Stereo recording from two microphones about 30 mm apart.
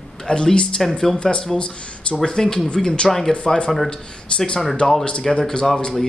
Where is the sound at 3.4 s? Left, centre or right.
Left.